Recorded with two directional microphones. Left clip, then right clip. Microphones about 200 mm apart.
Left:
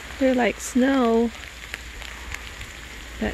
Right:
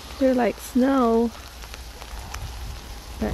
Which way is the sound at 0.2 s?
5° left (ahead or behind).